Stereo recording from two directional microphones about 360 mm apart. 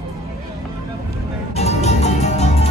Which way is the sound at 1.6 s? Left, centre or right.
Centre.